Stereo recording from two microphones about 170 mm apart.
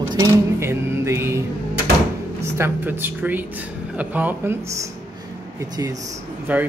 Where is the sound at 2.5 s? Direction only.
15° right (ahead or behind).